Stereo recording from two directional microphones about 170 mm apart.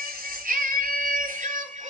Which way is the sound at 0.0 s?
55° right (ahead or behind).